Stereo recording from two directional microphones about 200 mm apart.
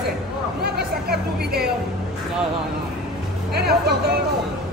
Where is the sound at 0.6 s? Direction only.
55° right (ahead or behind).